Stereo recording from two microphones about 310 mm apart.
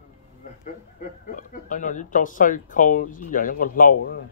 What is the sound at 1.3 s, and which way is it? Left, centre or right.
Speech, left.